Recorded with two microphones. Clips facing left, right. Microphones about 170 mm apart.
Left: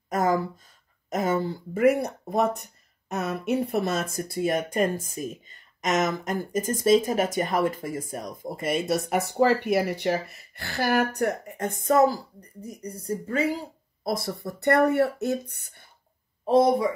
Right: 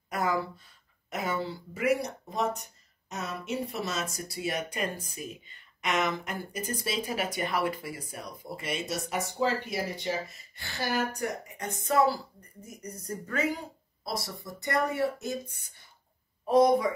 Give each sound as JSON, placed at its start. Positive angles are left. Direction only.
{"t": 0.1, "sound": "speech", "side_deg": 45}
{"t": 12.6, "sound": "speech", "side_deg": 30}
{"t": 14.0, "sound": "speech", "side_deg": 55}
{"t": 16.4, "sound": "speech", "side_deg": 25}